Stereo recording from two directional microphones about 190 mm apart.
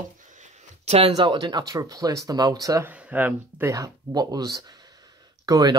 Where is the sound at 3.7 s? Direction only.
20° right (ahead or behind).